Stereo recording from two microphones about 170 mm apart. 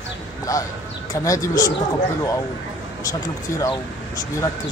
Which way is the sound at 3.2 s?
20° left (ahead or behind).